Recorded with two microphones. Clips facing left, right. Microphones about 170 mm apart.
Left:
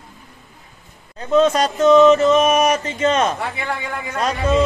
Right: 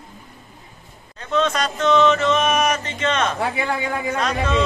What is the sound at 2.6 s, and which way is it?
Speech, 35° left (ahead or behind).